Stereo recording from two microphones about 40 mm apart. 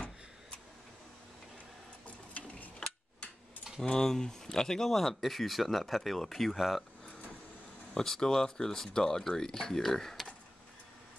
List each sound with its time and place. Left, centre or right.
2.0 s printer: left
4.0 s speech: centre
7.9 s speech: centre